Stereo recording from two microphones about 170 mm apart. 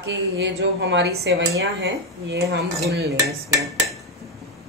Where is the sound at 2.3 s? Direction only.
75° right (ahead or behind).